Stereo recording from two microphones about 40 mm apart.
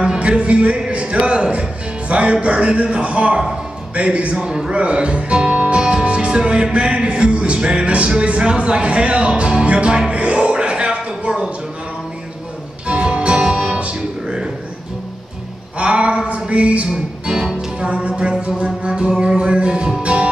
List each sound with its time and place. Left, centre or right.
0.0 s a man's voice: right
2.3 s music: right
3.9 s a man's voice: right
4.5 s music: right
12.8 s music: right
13.7 s music: right
15.8 s a sound: right
16.9 s music: right